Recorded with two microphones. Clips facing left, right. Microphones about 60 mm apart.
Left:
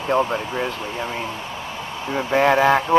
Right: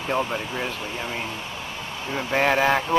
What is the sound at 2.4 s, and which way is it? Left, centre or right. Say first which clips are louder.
Speech: left 4 dB; left.